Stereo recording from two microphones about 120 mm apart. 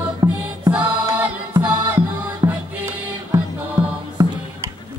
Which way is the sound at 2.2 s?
15° right (ahead or behind).